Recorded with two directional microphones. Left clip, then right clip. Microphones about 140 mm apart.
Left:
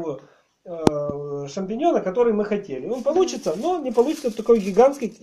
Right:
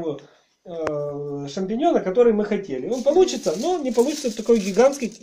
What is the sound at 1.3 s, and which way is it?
Speech, 25° left (ahead or behind).